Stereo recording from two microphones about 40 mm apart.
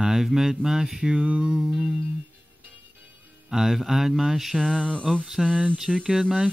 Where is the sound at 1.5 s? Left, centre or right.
Centre.